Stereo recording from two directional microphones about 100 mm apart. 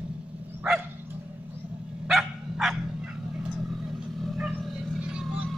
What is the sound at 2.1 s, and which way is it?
Dog, centre (ahead or behind).